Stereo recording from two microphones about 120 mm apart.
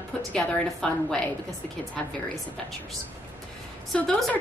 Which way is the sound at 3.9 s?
5° left (ahead or behind).